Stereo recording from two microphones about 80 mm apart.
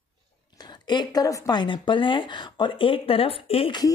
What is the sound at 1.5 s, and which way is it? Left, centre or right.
Speech, left.